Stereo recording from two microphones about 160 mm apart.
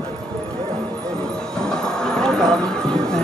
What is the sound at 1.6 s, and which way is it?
Clip-clop, 5° left (ahead or behind).